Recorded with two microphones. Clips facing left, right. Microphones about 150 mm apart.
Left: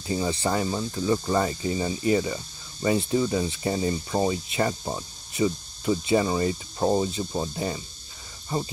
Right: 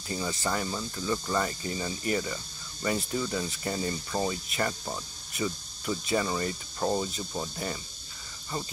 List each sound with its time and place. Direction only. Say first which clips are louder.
0.3 s speech: left 4 dB; 25° left (ahead or behind)